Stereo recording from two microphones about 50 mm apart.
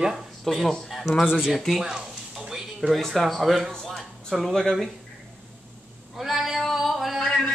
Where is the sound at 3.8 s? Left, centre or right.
Centre.